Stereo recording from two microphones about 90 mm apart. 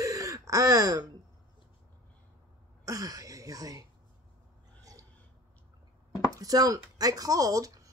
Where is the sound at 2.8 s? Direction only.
40° right (ahead or behind).